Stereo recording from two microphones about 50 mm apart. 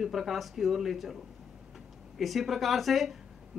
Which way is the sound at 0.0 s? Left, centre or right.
Centre.